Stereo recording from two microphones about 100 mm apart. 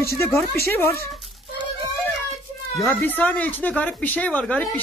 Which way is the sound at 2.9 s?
15° left (ahead or behind).